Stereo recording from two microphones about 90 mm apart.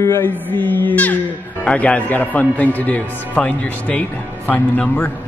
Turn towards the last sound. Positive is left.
turn(degrees=20)  # may be behind; listen again after turning